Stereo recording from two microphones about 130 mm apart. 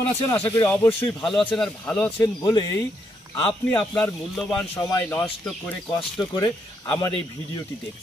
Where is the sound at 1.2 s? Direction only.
5° left (ahead or behind).